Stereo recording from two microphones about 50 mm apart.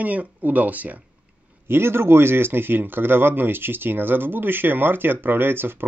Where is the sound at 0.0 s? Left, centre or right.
Right.